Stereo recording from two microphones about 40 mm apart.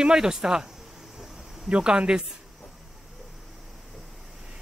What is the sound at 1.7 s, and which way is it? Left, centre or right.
Speech, right.